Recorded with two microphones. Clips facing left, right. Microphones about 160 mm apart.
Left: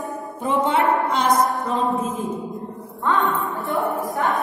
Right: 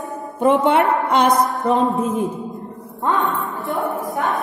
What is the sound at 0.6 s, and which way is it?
A woman's voice, 65° right (ahead or behind).